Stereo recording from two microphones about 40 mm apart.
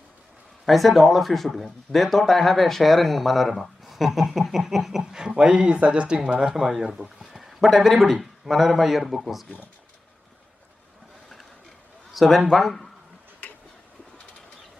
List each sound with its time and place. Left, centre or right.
0.7 s a man's voice: centre
12.1 s speech: centre